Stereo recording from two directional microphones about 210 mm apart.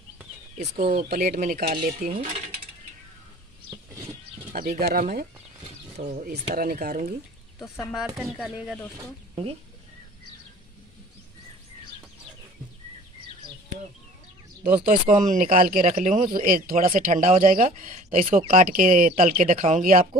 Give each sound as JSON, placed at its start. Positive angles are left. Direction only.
{"t": 0.6, "sound": "speech", "side_deg": -30}
{"t": 1.0, "sound": "speech", "side_deg": -45}
{"t": 3.7, "sound": "a sound", "side_deg": -15}
{"t": 4.5, "sound": "speech", "side_deg": -45}
{"t": 5.9, "sound": "speech", "side_deg": -35}
{"t": 6.3, "sound": "speech", "side_deg": -45}
{"t": 8.2, "sound": "speech", "side_deg": 0}
{"t": 8.9, "sound": "speech", "side_deg": -15}
{"t": 14.9, "sound": "speech", "side_deg": -35}